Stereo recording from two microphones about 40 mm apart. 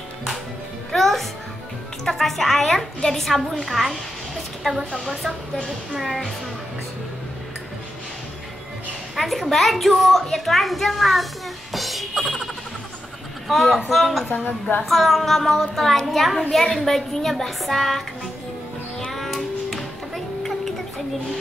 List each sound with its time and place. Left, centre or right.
0.9 s music: centre
2.0 s a woman's voice: centre
4.9 s a woman's voice: centre
9.1 s a woman's voice: centre
11.7 s music: centre
13.5 s a woman's voice: centre
14.4 s a woman's voice: left
14.9 s a woman's voice: centre
18.9 s music: centre